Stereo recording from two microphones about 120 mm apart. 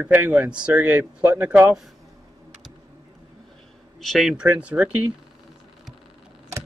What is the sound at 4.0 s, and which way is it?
Speech, centre (ahead or behind).